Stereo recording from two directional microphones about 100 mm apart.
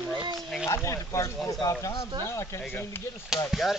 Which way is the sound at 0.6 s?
30° left (ahead or behind).